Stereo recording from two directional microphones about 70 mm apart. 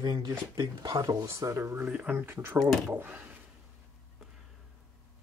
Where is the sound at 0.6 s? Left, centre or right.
Right.